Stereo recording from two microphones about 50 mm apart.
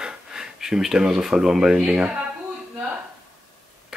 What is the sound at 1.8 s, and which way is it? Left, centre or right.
Speech, right.